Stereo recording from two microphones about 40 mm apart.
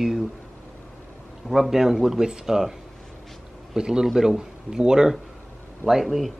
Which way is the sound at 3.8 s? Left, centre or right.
Centre.